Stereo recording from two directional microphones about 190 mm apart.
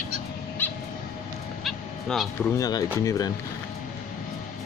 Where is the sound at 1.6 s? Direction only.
Centre (ahead or behind).